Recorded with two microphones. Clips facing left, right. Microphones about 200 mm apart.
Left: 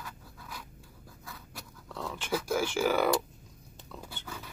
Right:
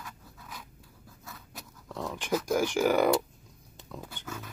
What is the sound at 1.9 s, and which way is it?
Dog, 15° right (ahead or behind).